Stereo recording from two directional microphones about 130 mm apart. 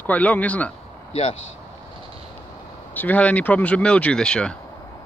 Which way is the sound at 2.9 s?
15° left (ahead or behind).